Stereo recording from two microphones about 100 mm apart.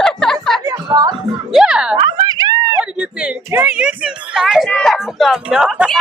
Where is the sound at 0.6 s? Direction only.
40° right (ahead or behind).